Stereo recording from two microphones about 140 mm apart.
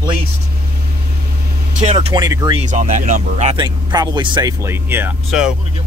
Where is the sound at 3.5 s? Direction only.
30° right (ahead or behind).